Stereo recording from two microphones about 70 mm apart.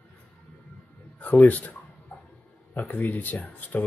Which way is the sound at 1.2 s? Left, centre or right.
Left.